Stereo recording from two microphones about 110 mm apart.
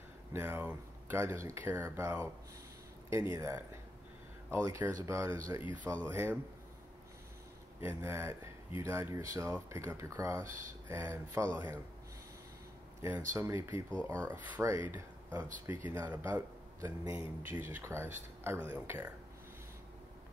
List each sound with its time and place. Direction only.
0.3 s speech: 20° right (ahead or behind)
3.3 s speech: 25° right (ahead or behind)
7.8 s speech: 25° right (ahead or behind)
13.0 s speech: 25° right (ahead or behind)